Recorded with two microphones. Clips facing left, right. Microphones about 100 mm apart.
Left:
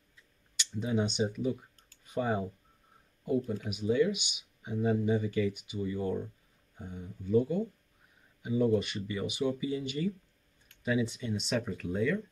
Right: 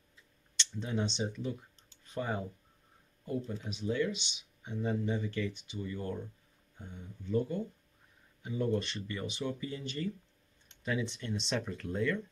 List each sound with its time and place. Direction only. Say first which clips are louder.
0.6 s speech: left 4 dB; 10° left (ahead or behind)